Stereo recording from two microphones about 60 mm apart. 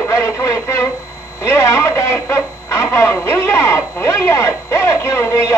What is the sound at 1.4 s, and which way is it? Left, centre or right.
Speech, left.